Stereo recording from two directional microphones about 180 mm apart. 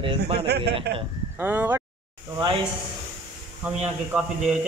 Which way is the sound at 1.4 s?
10° right (ahead or behind).